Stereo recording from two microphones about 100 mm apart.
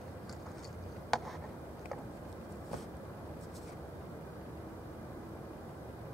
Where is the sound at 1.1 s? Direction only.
5° left (ahead or behind).